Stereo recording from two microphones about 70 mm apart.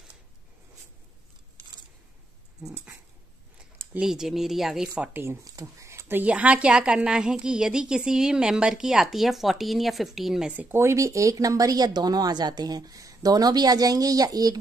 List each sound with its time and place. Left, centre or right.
4.0 s speech: centre
4.9 s speech: centre
5.4 s a sound: right
6.2 s a woman's voice: centre
10.7 s speech: right